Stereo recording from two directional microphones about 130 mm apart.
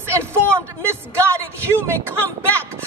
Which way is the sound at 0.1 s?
20° right (ahead or behind).